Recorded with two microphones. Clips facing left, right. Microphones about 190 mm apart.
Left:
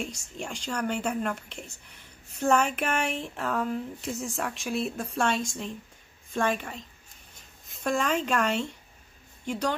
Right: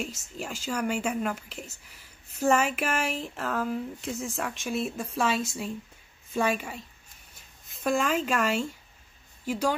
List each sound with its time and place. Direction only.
0.0 s a woman's voice: 5° right (ahead or behind)